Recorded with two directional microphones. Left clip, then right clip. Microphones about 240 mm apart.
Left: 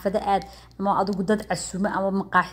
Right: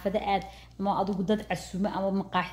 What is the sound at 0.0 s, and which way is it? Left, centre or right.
A woman's voice, centre.